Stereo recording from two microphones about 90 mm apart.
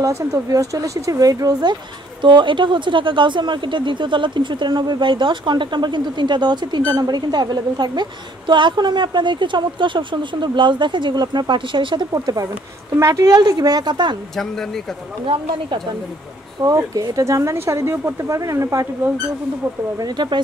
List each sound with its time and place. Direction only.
0.0 s speech: 40° right (ahead or behind)
2.2 s speech: 65° right (ahead or behind)
12.1 s speech: 40° right (ahead or behind)
13.4 s speech: 50° right (ahead or behind)
16.6 s speech: 45° right (ahead or behind)
20.0 s speech: 50° right (ahead or behind)